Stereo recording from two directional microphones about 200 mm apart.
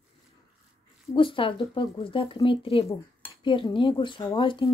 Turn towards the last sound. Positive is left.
turn(degrees=25)  # may be behind; listen again after turning